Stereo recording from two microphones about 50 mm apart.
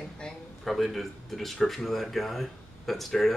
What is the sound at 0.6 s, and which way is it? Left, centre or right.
Speech, centre.